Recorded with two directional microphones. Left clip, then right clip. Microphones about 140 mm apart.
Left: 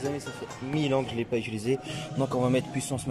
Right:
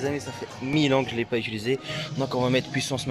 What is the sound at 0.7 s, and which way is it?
Speech, 5° left (ahead or behind).